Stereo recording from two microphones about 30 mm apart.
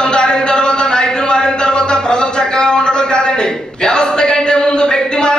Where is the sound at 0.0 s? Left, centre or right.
Left.